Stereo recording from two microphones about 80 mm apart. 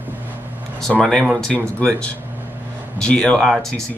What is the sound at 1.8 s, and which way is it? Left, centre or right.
Speech, centre.